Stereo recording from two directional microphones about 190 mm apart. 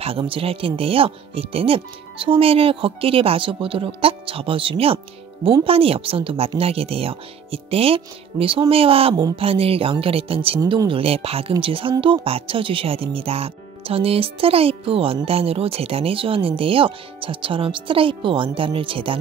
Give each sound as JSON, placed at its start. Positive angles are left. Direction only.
{"t": 0.0, "sound": "speech", "side_deg": -30}